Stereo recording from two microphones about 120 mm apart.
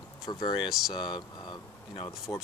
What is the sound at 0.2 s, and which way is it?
Speech, 35° left (ahead or behind).